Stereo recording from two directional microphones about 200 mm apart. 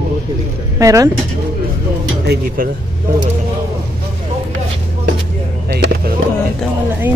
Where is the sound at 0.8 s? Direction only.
15° right (ahead or behind).